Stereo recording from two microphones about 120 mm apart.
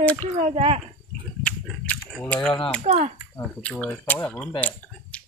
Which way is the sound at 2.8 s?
70° right (ahead or behind).